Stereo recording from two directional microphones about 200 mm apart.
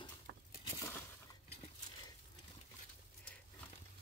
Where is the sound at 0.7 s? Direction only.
15° left (ahead or behind).